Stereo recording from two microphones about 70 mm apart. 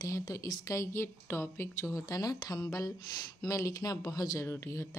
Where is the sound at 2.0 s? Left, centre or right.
Left.